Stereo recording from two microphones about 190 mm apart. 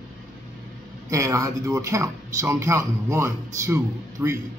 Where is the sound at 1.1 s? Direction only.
15° right (ahead or behind).